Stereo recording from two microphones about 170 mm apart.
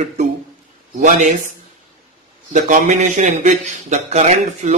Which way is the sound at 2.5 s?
50° right (ahead or behind).